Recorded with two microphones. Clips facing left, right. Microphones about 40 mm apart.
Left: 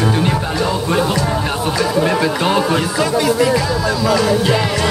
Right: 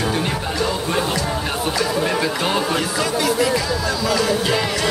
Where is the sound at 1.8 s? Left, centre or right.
Centre.